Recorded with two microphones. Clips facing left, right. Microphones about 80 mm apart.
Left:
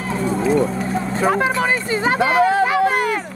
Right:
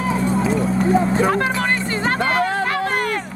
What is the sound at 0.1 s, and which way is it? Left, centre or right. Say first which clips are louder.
Vehicle: left 3 dB; centre.